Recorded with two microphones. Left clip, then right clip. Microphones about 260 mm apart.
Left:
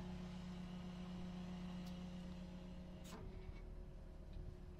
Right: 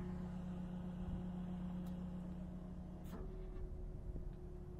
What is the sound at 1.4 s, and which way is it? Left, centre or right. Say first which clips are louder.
Vehicle: right 3 dB; left.